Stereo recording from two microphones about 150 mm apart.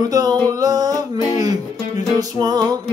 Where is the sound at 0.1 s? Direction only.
25° right (ahead or behind).